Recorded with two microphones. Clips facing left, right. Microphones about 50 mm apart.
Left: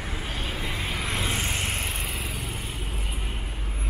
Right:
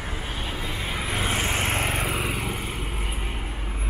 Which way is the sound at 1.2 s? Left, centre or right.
Right.